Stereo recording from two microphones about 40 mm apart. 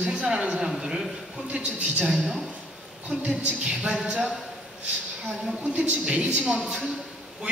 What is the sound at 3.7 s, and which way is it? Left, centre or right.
Speech, right.